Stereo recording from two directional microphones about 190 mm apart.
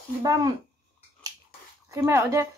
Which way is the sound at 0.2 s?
20° right (ahead or behind).